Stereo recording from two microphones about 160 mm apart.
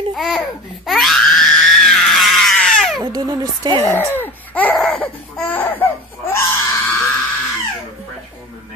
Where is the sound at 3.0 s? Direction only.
25° right (ahead or behind).